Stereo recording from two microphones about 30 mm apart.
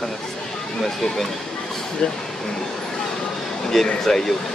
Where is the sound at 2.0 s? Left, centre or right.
Left.